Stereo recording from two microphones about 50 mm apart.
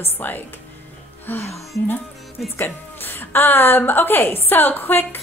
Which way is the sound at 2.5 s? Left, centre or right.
Left.